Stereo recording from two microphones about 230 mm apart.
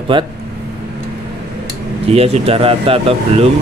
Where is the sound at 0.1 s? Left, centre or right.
Right.